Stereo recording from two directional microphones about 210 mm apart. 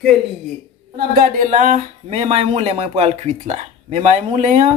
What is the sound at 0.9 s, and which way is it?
Speech, 40° right (ahead or behind).